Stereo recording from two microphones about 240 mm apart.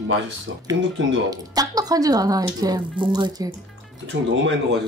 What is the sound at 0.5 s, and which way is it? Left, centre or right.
Speech, right.